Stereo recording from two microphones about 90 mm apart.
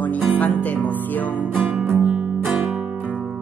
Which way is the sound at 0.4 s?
15° left (ahead or behind).